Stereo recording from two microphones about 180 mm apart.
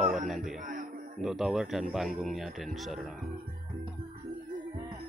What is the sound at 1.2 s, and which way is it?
Speech, centre (ahead or behind).